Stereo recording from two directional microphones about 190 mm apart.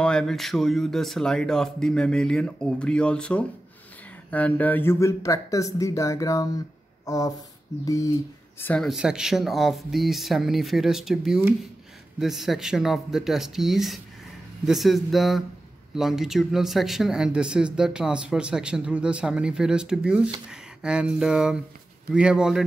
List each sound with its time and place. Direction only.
0.0 s speech: 5° left (ahead or behind)